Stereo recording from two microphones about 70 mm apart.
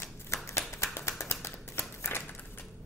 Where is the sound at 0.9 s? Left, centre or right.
Left.